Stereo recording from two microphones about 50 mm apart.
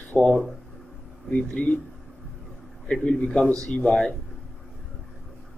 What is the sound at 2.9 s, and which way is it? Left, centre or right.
Speech, left.